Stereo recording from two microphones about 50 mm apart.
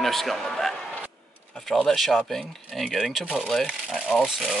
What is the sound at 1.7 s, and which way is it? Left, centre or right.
Speech, centre.